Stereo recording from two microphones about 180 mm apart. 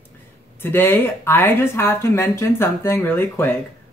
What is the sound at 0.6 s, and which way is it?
Speech, 10° left (ahead or behind).